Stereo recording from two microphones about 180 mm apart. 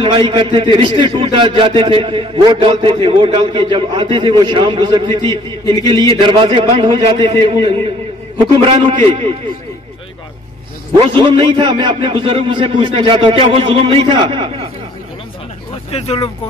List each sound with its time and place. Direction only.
0.0 s a man's voice: 30° right (ahead or behind)
5.3 s a man's voice: 20° left (ahead or behind)
6.0 s a man's voice: 30° right (ahead or behind)
11.0 s a man's voice: 25° right (ahead or behind)
15.9 s speech: 35° left (ahead or behind)